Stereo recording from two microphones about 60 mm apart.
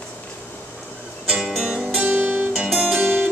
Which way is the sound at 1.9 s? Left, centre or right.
Centre.